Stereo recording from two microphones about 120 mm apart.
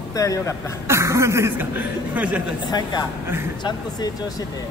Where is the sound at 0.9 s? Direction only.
25° right (ahead or behind).